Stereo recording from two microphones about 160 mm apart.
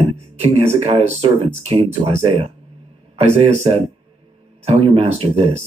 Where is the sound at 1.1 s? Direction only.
40° right (ahead or behind).